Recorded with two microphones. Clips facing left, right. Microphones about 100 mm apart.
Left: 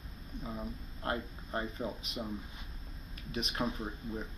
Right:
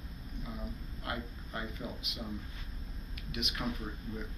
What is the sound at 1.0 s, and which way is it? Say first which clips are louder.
Speech: left 4 dB; 35° left (ahead or behind).